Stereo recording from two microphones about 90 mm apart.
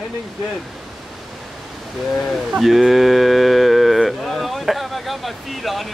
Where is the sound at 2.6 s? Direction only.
Centre (ahead or behind).